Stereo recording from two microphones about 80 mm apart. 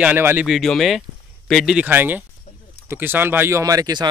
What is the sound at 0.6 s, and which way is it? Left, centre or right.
Speech, centre.